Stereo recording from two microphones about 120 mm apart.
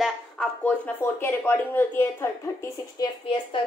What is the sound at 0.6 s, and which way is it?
Speech, 15° left (ahead or behind).